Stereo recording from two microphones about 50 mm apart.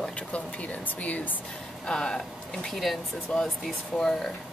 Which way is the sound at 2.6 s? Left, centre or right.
Centre.